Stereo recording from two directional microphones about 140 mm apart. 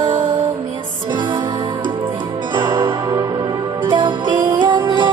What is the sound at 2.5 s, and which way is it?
Music, 35° right (ahead or behind).